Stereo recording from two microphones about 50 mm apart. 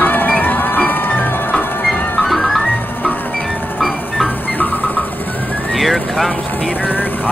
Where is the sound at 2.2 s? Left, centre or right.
Centre.